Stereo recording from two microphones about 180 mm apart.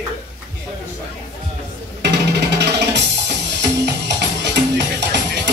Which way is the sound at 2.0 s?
70° right (ahead or behind).